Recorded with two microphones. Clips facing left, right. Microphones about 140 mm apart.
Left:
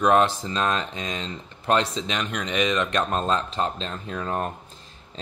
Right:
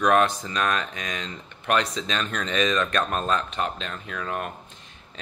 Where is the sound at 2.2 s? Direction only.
15° left (ahead or behind).